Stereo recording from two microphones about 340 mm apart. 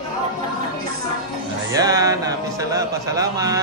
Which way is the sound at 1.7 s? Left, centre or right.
Centre.